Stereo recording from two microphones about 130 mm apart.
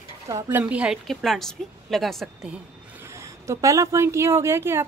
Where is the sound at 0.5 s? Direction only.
15° right (ahead or behind).